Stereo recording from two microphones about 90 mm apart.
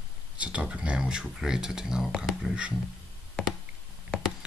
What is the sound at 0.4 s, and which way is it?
Speech, 10° right (ahead or behind).